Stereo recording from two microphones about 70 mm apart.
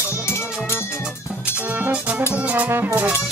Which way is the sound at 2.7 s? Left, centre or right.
Right.